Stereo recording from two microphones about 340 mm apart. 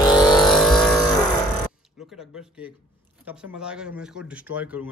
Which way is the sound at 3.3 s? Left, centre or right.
Centre.